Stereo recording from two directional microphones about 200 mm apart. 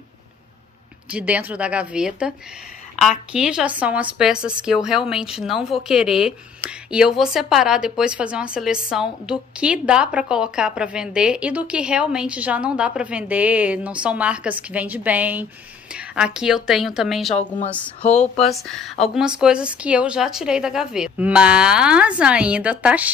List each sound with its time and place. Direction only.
1.1 s a woman's voice: 5° right (ahead or behind)
15.9 s a sound: 5° right (ahead or behind)
16.3 s a woman's voice: 5° right (ahead or behind)
18.1 s speech: 35° left (ahead or behind)
18.4 s a woman's voice: centre (ahead or behind)